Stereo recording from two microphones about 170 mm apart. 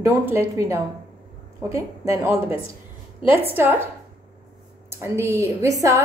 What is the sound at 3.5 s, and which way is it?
Speech, 10° right (ahead or behind).